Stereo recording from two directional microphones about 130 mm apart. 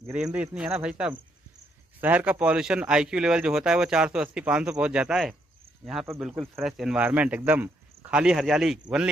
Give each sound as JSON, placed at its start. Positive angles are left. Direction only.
{"t": 0.1, "sound": "a man's voice", "side_deg": -10}